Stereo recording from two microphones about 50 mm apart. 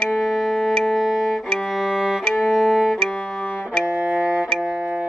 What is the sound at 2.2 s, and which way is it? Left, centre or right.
Music, centre.